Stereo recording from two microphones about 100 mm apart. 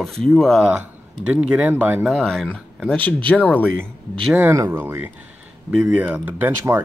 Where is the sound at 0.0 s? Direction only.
5° left (ahead or behind).